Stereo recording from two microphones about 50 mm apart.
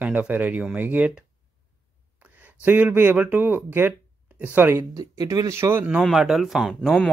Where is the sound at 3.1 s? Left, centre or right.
Right.